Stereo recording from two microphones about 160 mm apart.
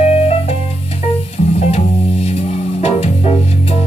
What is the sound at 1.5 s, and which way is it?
Music, 40° left (ahead or behind).